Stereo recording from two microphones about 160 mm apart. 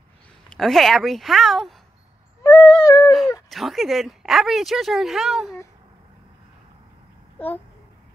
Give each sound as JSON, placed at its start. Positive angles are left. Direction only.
{"t": 0.5, "sound": "speech", "side_deg": 0}
{"t": 2.4, "sound": "music", "side_deg": 15}
{"t": 2.8, "sound": "a sound", "side_deg": 20}
{"t": 3.4, "sound": "speech", "side_deg": 0}
{"t": 7.3, "sound": "a child's voice", "side_deg": 10}